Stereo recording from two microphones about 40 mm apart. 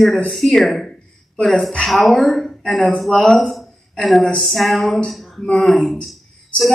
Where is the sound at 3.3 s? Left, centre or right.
Centre.